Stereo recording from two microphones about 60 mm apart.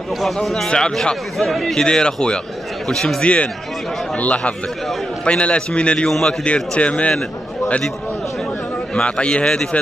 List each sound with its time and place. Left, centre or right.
0.2 s a man's voice: centre; by 7.2 s left
8.9 s speech: centre